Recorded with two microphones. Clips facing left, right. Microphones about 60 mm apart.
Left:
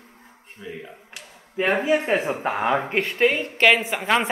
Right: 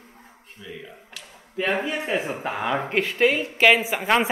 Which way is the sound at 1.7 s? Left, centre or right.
Left.